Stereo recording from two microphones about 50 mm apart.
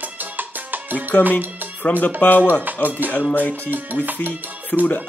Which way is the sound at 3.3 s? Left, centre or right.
Left.